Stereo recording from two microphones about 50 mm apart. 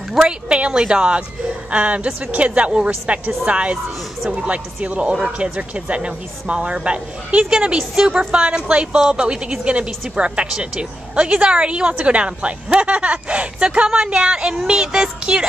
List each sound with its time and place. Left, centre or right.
0.2 s a woman's voice: right
13.8 s child singing: centre